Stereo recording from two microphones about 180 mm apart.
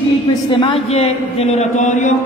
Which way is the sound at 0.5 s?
30° left (ahead or behind).